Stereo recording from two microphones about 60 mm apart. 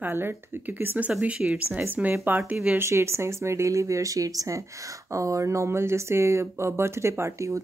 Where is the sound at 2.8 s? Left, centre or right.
Right.